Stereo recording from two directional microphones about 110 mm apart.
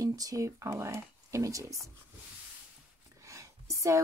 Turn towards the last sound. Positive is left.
turn(degrees=-30)  # may be behind; listen again after turning